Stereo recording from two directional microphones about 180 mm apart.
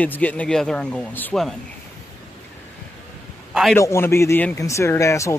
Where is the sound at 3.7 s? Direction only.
15° left (ahead or behind).